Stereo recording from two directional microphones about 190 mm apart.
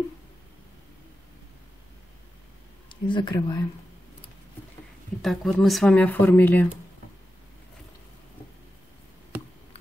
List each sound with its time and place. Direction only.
2.9 s speech: 25° left (ahead or behind)
5.2 s speech: centre (ahead or behind)